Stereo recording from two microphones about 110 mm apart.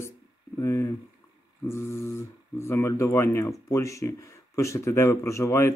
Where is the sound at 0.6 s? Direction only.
30° left (ahead or behind).